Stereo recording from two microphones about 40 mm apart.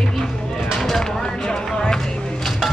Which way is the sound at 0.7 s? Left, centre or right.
Centre.